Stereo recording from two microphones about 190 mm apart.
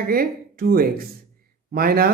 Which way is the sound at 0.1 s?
50° right (ahead or behind).